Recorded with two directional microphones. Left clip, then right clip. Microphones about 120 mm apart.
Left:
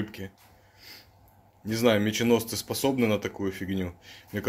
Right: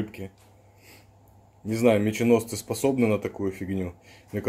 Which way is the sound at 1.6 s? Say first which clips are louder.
Right 2 dB; 25° right (ahead or behind).